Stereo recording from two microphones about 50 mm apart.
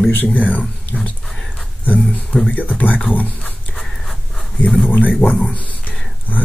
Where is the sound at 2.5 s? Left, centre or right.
Left.